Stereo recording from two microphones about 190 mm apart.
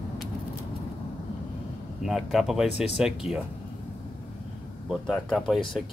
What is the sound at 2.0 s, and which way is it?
Speech, centre (ahead or behind).